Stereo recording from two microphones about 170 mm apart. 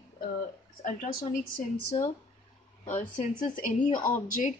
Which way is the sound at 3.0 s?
50° left (ahead or behind).